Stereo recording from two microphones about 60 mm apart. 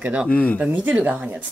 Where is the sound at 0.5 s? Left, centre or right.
Right.